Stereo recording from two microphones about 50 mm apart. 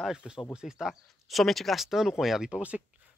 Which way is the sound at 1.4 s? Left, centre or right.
Centre.